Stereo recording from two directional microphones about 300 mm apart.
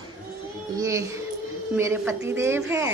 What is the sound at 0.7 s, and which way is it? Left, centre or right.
A woman's voice, centre.